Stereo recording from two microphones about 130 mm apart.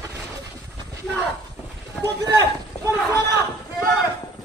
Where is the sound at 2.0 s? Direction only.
30° right (ahead or behind).